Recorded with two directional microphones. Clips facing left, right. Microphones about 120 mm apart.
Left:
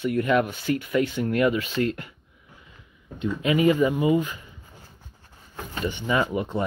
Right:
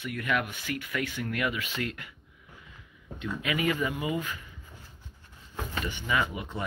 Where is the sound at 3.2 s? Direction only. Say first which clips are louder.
Left 9 dB; 30° left (ahead or behind).